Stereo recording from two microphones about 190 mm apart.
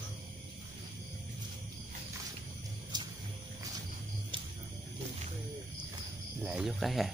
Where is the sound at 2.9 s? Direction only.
20° right (ahead or behind).